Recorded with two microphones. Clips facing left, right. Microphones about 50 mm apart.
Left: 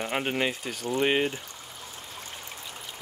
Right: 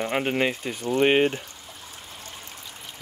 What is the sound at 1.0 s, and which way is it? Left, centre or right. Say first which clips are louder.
Speech: right 6 dB; right.